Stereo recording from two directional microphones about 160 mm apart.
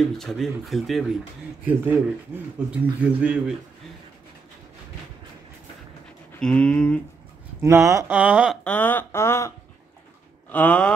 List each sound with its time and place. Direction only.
0.2 s speech: centre (ahead or behind)
1.7 s a man's voice: 10° right (ahead or behind)
6.4 s speech: 5° left (ahead or behind)
7.6 s speech: 20° right (ahead or behind)
8.2 s a man's voice: 5° right (ahead or behind)
8.6 s speech: 10° left (ahead or behind)
10.5 s speech: 10° left (ahead or behind)